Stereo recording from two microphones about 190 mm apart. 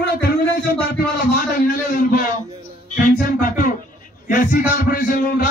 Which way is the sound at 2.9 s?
45° left (ahead or behind).